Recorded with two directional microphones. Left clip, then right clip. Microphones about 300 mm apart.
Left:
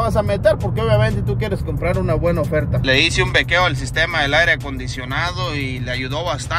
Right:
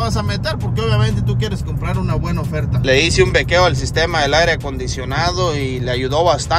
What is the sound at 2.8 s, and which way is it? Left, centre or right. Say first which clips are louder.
Speech: right 4 dB; centre.